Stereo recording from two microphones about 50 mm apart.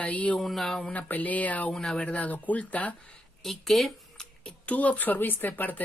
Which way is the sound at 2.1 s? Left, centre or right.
Left.